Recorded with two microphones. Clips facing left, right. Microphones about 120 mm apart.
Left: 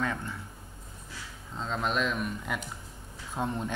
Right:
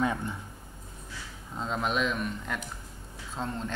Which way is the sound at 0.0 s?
15° right (ahead or behind).